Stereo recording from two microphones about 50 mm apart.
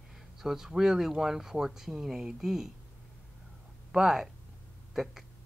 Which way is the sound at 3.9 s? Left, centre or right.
Centre.